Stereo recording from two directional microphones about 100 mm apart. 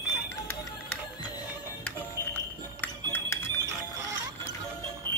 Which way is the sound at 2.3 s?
20° left (ahead or behind).